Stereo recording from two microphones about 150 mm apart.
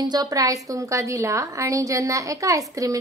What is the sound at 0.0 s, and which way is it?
A woman's voice, 25° right (ahead or behind).